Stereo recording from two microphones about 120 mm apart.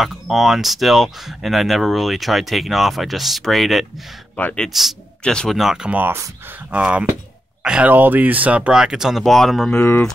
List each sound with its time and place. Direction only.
0.0 s speech: centre (ahead or behind)
4.4 s speech: 15° left (ahead or behind)
4.6 s speech: centre (ahead or behind)
9.8 s speech: 15° left (ahead or behind)